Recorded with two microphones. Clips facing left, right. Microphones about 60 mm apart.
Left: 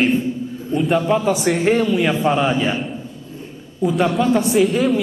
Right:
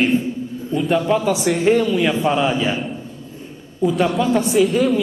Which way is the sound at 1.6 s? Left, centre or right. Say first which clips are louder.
Right 3 dB; left.